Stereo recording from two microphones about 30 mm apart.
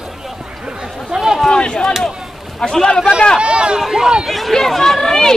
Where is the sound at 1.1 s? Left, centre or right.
Centre.